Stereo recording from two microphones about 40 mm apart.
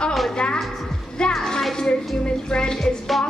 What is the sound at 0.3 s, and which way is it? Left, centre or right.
Speech, left.